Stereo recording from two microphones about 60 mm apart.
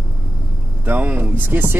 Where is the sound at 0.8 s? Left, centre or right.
Right.